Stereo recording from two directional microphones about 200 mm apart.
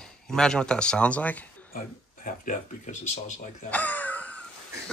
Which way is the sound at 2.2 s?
40° left (ahead or behind).